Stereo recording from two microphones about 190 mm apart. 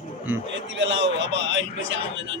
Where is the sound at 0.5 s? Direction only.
75° right (ahead or behind).